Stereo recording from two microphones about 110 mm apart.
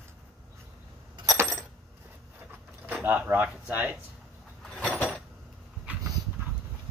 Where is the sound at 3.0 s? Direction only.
15° right (ahead or behind).